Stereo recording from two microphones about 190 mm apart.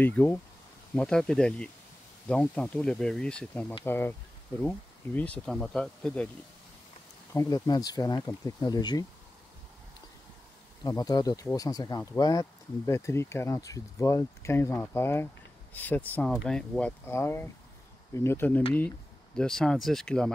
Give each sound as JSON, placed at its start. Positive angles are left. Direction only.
{"t": 0.0, "sound": "speech", "side_deg": 10}
{"t": 7.3, "sound": "speech", "side_deg": 15}
{"t": 10.8, "sound": "speech", "side_deg": 20}